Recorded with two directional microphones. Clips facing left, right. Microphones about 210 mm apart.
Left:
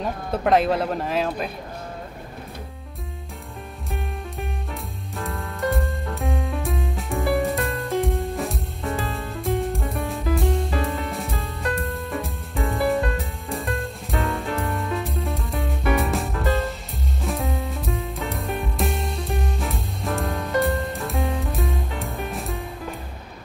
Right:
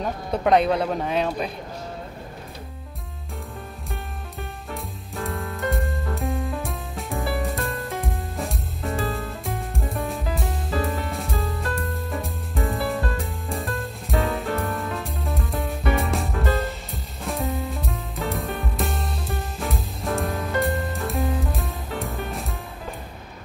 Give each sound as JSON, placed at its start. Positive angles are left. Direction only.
{"t": 0.0, "sound": "speech", "side_deg": 0}
{"t": 5.1, "sound": "music", "side_deg": 0}